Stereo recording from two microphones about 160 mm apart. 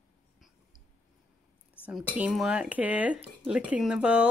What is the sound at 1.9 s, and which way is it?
Speech, 5° right (ahead or behind).